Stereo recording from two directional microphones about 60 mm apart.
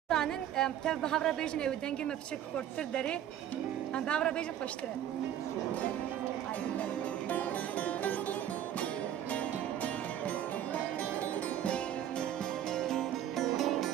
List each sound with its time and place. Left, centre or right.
0.1 s speech: centre
6.8 s music: left
11.6 s music: centre